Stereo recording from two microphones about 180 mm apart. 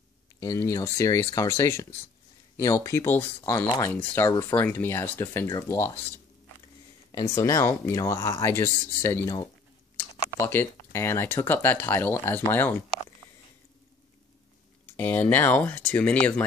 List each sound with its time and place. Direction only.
0.4 s speech: 20° left (ahead or behind)
3.6 s speech: 25° left (ahead or behind)
3.9 s speech: 10° left (ahead or behind)
15.0 s speech: 10° left (ahead or behind)